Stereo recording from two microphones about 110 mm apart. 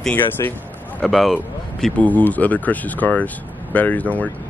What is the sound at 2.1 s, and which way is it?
Speech, 15° left (ahead or behind).